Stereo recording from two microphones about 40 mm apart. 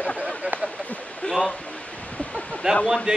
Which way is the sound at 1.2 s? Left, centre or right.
Left.